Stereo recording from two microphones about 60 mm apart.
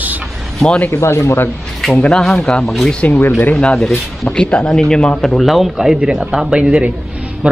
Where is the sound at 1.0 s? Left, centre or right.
Left.